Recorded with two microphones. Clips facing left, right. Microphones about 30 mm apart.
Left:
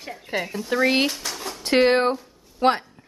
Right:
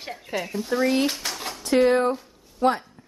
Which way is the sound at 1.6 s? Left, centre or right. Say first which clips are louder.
Left 1 dB; left.